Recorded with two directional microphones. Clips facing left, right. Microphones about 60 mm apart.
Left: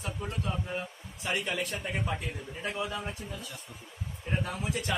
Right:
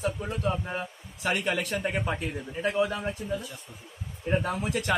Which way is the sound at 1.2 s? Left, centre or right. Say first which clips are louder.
Right 4 dB; right.